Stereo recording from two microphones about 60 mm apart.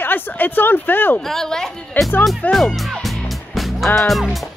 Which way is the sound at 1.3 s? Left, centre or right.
Centre.